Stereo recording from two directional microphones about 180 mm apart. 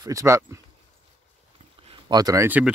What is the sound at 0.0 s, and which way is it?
Speech, 15° right (ahead or behind).